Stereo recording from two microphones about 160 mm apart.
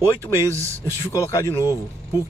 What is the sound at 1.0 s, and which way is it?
Speech, 20° left (ahead or behind).